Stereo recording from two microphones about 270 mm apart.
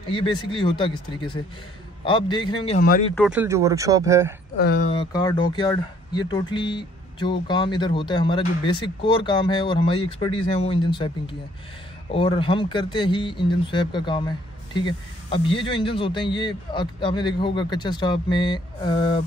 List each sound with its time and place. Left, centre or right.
0.0 s speech: centre
3.2 s speech: centre
4.6 s speech: left
5.1 s speech: centre